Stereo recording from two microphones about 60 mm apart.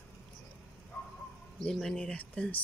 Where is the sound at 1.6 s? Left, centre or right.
Centre.